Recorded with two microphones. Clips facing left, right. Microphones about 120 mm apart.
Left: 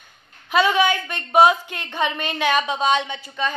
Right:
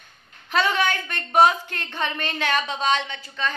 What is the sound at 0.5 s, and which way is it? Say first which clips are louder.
A woman's voice: left 4 dB; 10° left (ahead or behind).